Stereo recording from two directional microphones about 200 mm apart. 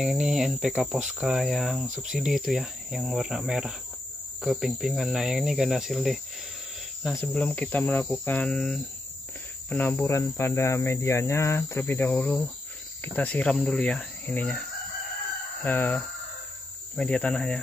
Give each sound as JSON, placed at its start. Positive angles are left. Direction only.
{"t": 0.0, "sound": "cricket", "side_deg": -5}
{"t": 7.2, "sound": "speech", "side_deg": 5}
{"t": 15.6, "sound": "speech", "side_deg": 10}
{"t": 16.9, "sound": "cricket", "side_deg": 5}